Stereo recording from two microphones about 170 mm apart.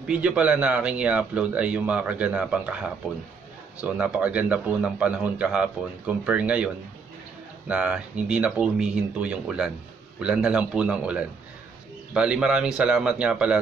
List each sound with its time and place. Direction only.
0.0 s a man's voice: 5° right (ahead or behind)